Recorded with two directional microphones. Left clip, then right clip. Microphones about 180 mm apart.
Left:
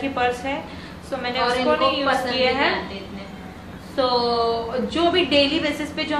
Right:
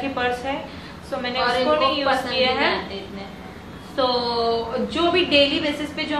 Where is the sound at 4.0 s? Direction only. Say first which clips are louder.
Left 1 dB; 20° left (ahead or behind).